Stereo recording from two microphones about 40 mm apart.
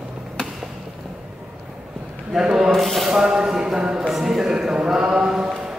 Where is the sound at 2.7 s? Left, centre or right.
Centre.